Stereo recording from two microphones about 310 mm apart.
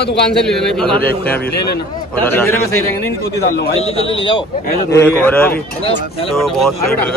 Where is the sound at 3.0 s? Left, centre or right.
Left.